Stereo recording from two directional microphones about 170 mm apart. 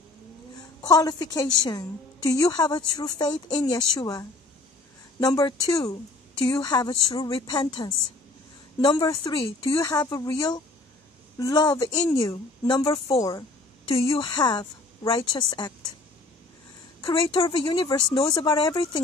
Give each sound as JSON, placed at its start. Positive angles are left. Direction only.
{"t": 0.8, "sound": "a woman's voice", "side_deg": 25}
{"t": 6.5, "sound": "a woman's voice", "side_deg": 25}
{"t": 9.4, "sound": "speech", "side_deg": 35}
{"t": 9.8, "sound": "a woman's voice", "side_deg": 20}
{"t": 17.0, "sound": "a woman's voice", "side_deg": 30}